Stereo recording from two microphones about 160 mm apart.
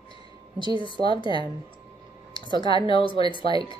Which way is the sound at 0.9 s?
30° left (ahead or behind).